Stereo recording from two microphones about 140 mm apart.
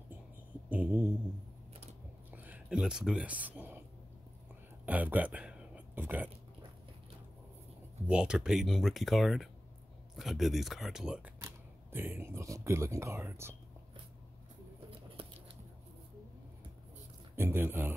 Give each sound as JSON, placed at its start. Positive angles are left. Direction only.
{"t": 0.7, "sound": "a sound", "side_deg": -10}
{"t": 2.3, "sound": "a sound", "side_deg": -10}
{"t": 4.8, "sound": "speech", "side_deg": -10}
{"t": 8.1, "sound": "speech", "side_deg": -5}
{"t": 11.3, "sound": "speech", "side_deg": -15}
{"t": 14.9, "sound": "scissors", "side_deg": -40}
{"t": 17.4, "sound": "speech", "side_deg": -15}